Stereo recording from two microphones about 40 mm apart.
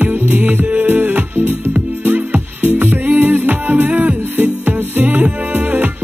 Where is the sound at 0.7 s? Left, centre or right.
Right.